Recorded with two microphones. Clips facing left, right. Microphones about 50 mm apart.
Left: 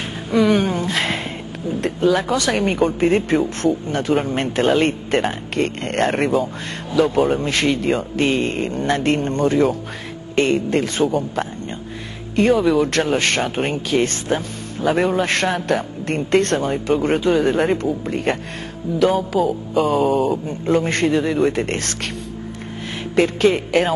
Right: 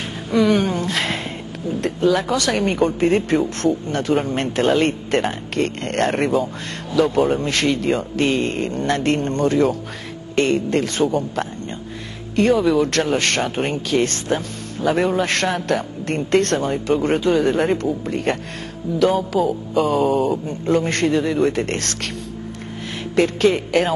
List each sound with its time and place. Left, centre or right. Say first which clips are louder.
0.0 s speech: left 1 dB; centre
20.4 s speech: left 1 dB; centre
23.1 s speech: left 1 dB; centre